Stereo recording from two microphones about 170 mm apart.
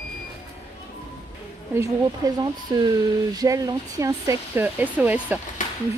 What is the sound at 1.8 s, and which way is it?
Speech, 20° right (ahead or behind).